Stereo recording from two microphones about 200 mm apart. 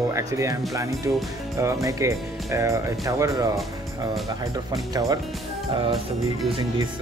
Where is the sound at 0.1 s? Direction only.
15° right (ahead or behind).